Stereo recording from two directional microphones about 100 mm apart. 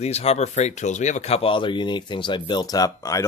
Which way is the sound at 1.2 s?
80° left.